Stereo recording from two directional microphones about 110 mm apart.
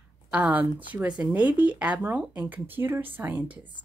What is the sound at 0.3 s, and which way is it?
A woman's voice, 15° right (ahead or behind).